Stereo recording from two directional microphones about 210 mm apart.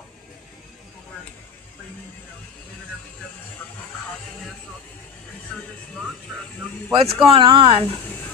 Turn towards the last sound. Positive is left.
turn(degrees=-25)  # may be behind; listen again after turning